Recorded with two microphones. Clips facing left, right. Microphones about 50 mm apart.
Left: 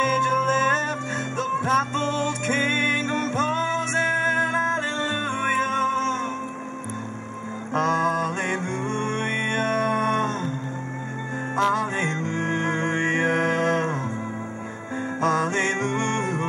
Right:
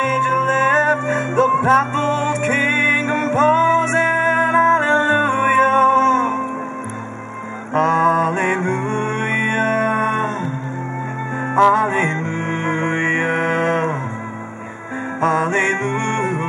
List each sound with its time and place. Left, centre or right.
0.0 s music: right
7.7 s music: right
11.5 s music: right
15.1 s music: right